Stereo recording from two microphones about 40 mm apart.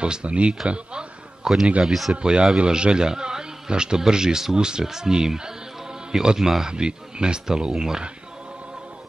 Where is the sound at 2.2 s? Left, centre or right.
Right.